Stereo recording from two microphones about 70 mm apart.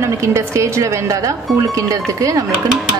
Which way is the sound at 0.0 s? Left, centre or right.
Right.